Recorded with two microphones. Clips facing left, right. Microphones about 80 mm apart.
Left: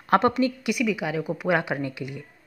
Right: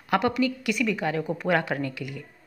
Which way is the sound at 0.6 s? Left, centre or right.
Centre.